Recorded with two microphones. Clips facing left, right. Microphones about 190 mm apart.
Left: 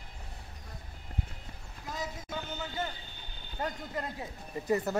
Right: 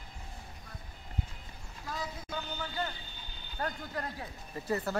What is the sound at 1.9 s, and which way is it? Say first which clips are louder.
Vehicle: left 1 dB; 20° left (ahead or behind).